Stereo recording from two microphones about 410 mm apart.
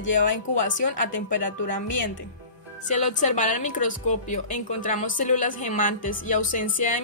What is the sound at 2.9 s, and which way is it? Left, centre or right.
A woman's voice, centre.